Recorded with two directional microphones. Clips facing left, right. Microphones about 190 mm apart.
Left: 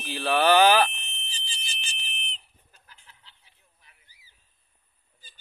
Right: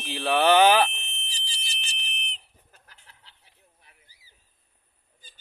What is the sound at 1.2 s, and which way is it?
Chicken, 75° right (ahead or behind).